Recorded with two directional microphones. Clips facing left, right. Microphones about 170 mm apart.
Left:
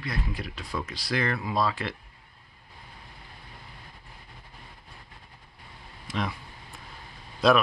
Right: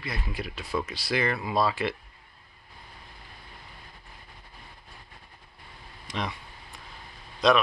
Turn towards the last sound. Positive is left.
turn(degrees=5)  # may be behind; listen again after turning